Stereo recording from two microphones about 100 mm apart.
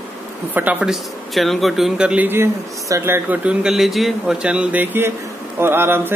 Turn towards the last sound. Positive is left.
turn(degrees=-20)  # may be behind; listen again after turning